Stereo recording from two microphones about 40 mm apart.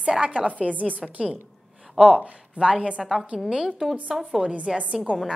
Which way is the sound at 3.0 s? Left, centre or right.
Centre.